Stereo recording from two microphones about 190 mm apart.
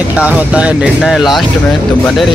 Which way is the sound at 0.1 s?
5° right (ahead or behind).